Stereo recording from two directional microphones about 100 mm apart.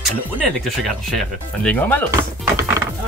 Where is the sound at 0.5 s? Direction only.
Centre (ahead or behind).